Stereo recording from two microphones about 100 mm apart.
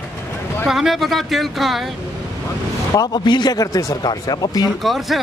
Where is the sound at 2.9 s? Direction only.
40° left (ahead or behind).